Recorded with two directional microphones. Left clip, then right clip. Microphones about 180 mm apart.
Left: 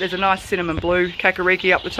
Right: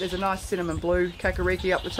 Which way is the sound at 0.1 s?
10° left (ahead or behind).